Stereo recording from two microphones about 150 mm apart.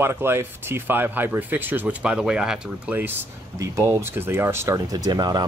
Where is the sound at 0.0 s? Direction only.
15° right (ahead or behind).